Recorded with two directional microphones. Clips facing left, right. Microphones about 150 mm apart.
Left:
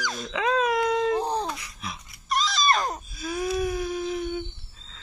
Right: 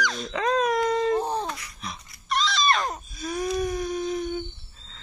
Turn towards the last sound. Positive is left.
turn(degrees=5)  # may be behind; listen again after turning